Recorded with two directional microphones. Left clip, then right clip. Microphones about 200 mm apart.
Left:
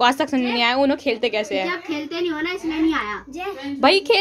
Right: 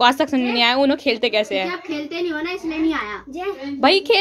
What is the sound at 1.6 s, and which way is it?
A child's voice, 20° left (ahead or behind).